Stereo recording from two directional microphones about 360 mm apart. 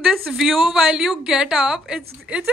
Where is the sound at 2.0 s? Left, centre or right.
Centre.